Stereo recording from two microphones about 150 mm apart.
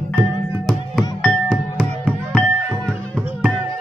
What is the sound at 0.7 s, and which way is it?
Music, 5° left (ahead or behind).